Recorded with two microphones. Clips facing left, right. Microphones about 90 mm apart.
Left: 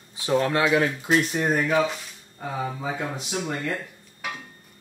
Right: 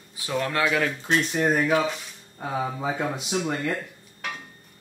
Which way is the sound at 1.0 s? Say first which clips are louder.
Left 1 dB; 5° left (ahead or behind).